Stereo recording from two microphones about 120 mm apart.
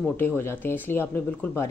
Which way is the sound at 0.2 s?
20° left (ahead or behind).